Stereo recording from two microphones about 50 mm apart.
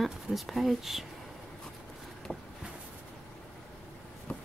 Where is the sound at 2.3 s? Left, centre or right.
Centre.